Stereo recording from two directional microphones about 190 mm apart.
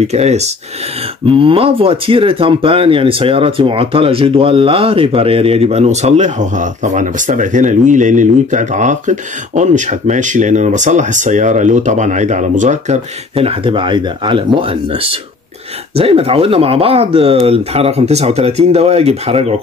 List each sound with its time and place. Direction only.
0.0 s speech: 35° right (ahead or behind)